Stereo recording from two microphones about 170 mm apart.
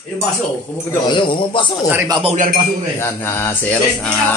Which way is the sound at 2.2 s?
45° right (ahead or behind).